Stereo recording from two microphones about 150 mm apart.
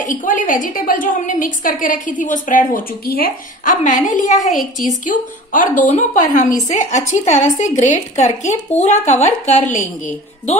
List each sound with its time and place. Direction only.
0.0 s a woman's voice: 60° left (ahead or behind)
3.8 s a woman's voice: 55° left (ahead or behind)